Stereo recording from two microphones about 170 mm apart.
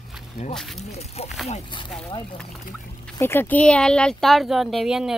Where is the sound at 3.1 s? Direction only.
15° left (ahead or behind).